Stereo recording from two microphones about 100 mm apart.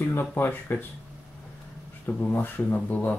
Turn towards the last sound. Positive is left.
turn(degrees=15)  # may be behind; listen again after turning